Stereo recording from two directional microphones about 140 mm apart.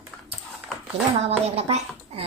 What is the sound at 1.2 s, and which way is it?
A woman's voice, 45° right (ahead or behind).